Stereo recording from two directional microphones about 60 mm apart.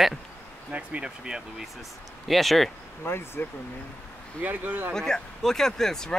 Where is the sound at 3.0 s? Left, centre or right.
Left.